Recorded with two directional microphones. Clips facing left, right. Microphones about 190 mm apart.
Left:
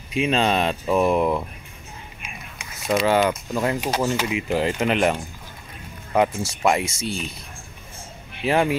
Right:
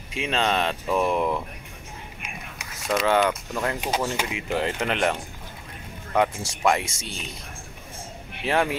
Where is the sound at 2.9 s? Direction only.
5° left (ahead or behind).